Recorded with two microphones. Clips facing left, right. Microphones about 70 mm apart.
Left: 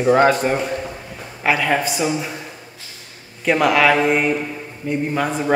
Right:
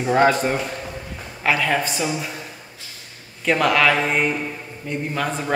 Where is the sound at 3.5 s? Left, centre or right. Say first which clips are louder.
Left 2 dB; centre.